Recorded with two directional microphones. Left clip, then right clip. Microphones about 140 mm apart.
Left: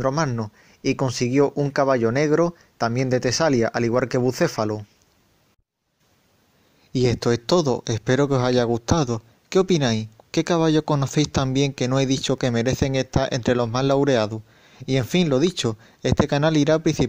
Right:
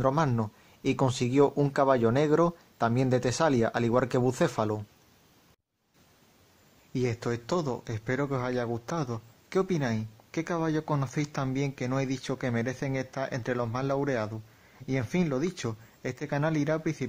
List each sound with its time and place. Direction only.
0.4 s a man's voice: 10° left (ahead or behind)
6.9 s speech: 35° left (ahead or behind)